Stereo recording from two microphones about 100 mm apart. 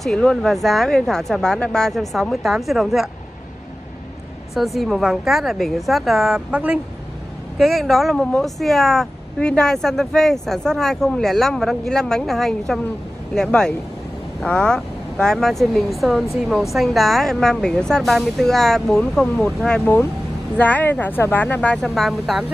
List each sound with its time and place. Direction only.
0.0 s speech: 5° left (ahead or behind)
4.7 s speech: centre (ahead or behind)
21.8 s speech: centre (ahead or behind)